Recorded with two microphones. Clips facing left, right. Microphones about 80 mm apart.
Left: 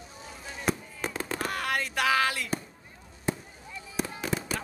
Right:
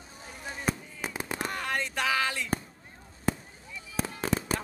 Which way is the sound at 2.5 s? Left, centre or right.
Right.